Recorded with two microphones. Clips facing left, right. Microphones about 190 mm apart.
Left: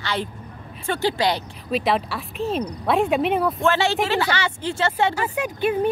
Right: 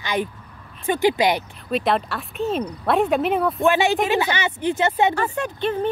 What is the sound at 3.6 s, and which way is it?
Speech, 15° right (ahead or behind).